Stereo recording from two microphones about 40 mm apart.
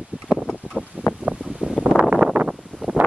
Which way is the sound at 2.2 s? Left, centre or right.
Left.